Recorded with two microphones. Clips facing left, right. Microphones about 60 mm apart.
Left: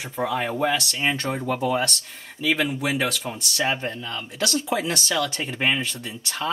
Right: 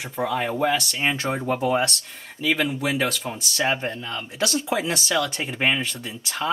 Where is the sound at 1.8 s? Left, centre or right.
Centre.